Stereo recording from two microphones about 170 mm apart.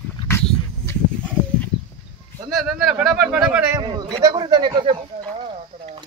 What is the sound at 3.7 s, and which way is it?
A man's voice, 25° right (ahead or behind).